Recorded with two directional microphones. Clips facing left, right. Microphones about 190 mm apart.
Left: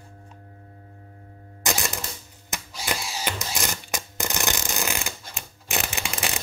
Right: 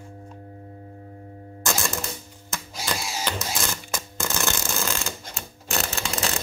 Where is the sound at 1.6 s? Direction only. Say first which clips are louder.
Right 1 dB; 15° left (ahead or behind).